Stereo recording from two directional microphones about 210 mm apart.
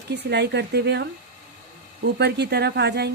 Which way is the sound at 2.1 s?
50° right (ahead or behind).